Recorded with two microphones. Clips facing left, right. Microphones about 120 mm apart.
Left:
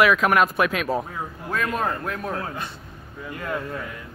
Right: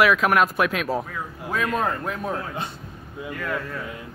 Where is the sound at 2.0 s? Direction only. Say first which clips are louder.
Right 1 dB; 5° right (ahead or behind).